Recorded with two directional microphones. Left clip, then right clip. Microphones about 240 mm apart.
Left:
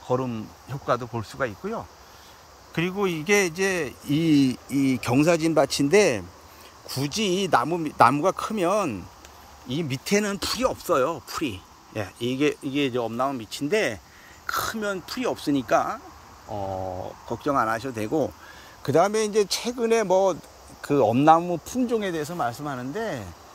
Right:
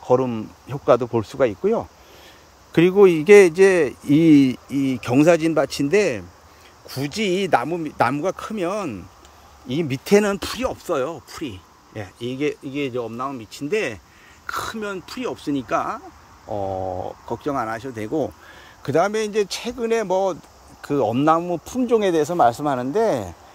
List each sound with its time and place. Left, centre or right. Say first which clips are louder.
0.0 s speech: right 8 dB; centre
9.7 s speech: right 7 dB; centre